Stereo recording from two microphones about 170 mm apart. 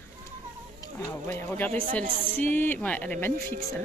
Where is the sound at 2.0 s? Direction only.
55° right (ahead or behind).